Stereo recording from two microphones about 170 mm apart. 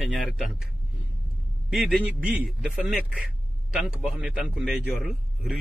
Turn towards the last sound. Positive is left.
turn(degrees=0)  # may be behind; listen again after turning